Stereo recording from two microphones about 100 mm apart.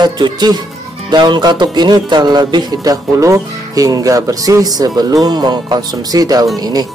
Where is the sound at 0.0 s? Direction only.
45° right (ahead or behind).